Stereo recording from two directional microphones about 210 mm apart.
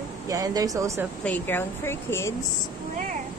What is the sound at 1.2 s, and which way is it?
Speech, 10° left (ahead or behind).